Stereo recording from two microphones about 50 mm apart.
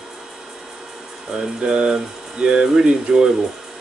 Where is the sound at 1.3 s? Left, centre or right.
Centre.